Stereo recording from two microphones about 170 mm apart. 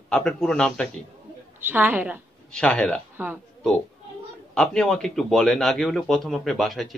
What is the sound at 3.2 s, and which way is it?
Speech, 10° right (ahead or behind).